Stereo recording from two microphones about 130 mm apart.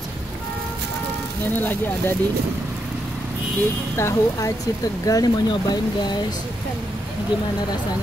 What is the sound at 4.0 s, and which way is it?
Speech, 25° left (ahead or behind).